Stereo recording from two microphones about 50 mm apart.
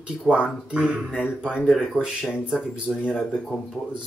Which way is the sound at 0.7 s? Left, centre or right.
Centre.